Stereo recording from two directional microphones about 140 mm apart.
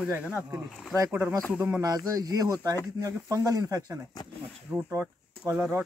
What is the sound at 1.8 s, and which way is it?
Speech, 25° right (ahead or behind).